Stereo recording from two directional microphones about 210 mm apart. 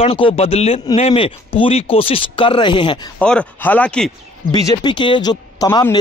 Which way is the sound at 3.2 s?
5° left (ahead or behind).